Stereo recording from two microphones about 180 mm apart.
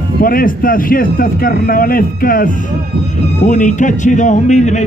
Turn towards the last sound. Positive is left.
turn(degrees=40)  # may be behind; listen again after turning